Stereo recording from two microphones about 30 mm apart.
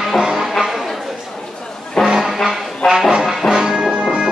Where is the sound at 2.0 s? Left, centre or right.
Centre.